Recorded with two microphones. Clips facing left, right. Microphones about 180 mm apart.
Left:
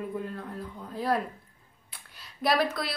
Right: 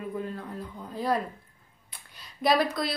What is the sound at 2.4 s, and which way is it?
Speech, centre (ahead or behind).